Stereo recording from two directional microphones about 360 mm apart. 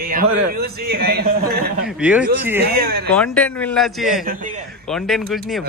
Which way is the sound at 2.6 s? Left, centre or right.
Right.